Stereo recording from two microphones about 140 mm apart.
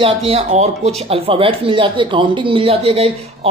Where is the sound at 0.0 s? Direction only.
45° right (ahead or behind).